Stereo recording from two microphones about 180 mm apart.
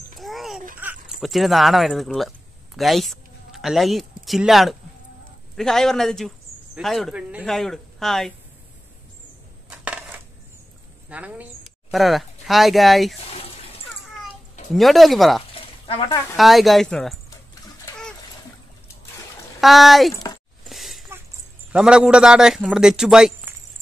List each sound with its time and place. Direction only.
0.2 s babbling: centre (ahead or behind)
0.7 s speech: 5° right (ahead or behind)
9.7 s coin: 10° right (ahead or behind)
11.1 s speech: 5° right (ahead or behind)
14.7 s a man's voice: centre (ahead or behind)
15.5 s a sound: 30° left (ahead or behind)
16.3 s a man's voice: centre (ahead or behind)
19.6 s a man's voice: centre (ahead or behind)
20.6 s a sound: centre (ahead or behind)
21.7 s a man's voice: 5° right (ahead or behind)